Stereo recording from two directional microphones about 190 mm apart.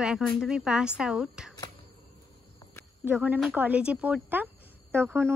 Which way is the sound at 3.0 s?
10° right (ahead or behind).